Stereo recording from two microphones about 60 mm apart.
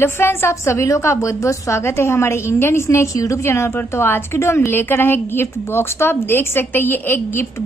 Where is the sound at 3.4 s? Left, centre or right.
Left.